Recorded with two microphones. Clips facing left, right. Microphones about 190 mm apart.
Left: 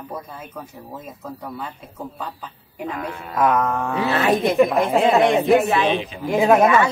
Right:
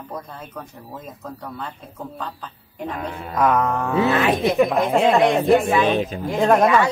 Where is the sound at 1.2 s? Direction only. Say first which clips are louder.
Left 1 dB; 5° left (ahead or behind).